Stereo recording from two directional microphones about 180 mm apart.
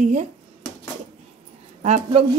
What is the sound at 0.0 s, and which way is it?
Speech, 40° right (ahead or behind).